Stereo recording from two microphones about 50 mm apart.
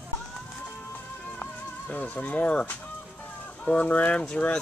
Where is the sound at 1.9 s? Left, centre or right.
Left.